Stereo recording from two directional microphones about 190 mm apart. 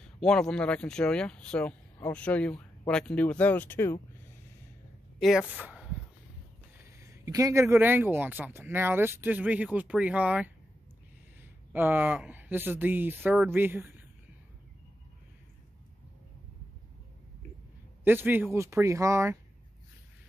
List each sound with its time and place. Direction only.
0.2 s speech: 5° left (ahead or behind)
5.6 s a sound: 5° right (ahead or behind)
7.0 s speech: 15° right (ahead or behind)
11.7 s speech: 10° right (ahead or behind)
18.0 s speech: 10° right (ahead or behind)